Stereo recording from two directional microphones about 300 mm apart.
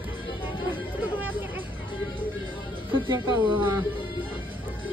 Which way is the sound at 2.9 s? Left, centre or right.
Centre.